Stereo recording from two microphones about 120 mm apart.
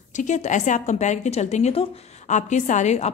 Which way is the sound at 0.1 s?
85° left.